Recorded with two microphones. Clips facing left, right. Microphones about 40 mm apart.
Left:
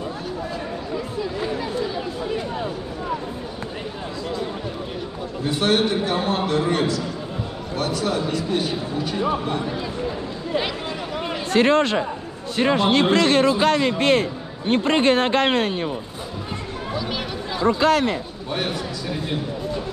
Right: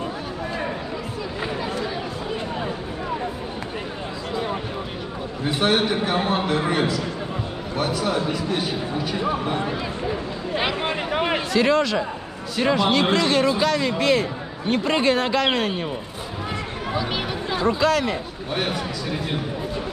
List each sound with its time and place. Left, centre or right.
5.6 s a man's voice: centre
9.6 s speech: centre
10.8 s a sound: right
11.5 s speech: left
12.5 s a man's voice: left
13.1 s speech: left
16.9 s a sound: centre
17.7 s speech: left
18.5 s a man's voice: centre